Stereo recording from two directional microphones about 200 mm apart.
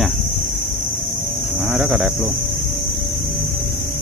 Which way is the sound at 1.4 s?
Centre (ahead or behind).